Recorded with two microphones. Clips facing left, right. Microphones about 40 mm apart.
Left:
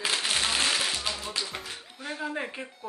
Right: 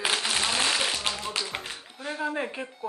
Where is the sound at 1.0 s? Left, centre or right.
Right.